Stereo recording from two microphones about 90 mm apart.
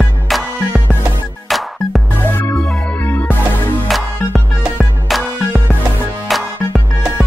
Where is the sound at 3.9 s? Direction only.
Centre (ahead or behind).